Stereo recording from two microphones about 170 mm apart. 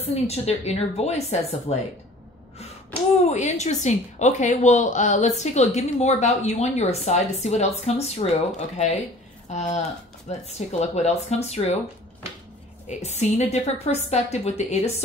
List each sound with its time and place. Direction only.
0.0 s a woman's voice: 40° left (ahead or behind)
10.3 s a woman's voice: 40° left (ahead or behind)
12.8 s a woman's voice: 40° left (ahead or behind)